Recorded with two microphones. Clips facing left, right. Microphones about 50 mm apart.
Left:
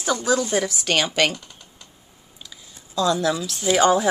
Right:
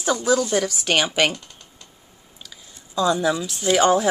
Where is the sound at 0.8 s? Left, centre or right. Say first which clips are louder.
Right 1 dB; centre.